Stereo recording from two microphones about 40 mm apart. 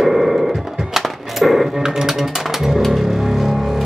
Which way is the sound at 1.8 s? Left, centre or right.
Centre.